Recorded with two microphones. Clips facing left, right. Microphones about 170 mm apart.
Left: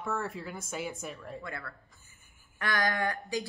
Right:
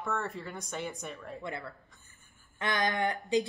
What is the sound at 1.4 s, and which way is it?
Speech, 20° right (ahead or behind).